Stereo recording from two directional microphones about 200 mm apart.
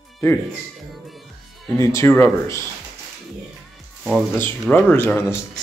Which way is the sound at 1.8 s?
15° left (ahead or behind).